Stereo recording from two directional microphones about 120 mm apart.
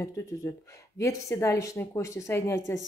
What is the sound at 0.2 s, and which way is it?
A woman's voice, 25° left (ahead or behind).